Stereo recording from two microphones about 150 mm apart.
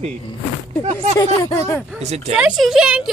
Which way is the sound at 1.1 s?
20° left (ahead or behind).